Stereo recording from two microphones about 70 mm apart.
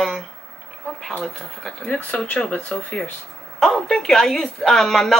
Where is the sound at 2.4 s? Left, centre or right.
Centre.